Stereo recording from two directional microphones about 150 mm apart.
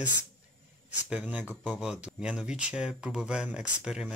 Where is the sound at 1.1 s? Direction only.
10° right (ahead or behind).